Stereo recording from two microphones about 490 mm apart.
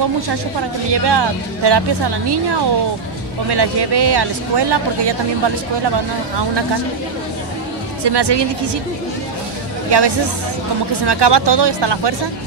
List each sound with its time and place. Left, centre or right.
0.3 s speech: right
8.0 s speech: right
9.8 s speech: right